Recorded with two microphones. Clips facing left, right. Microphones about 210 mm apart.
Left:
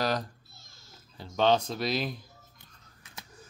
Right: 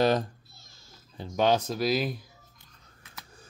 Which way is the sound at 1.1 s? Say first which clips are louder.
Even; 15° right (ahead or behind).